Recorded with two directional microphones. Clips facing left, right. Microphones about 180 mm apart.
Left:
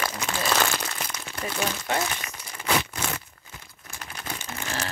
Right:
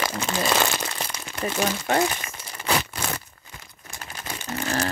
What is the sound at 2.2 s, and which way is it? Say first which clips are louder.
Crumpling: right 2 dB; 30° right (ahead or behind).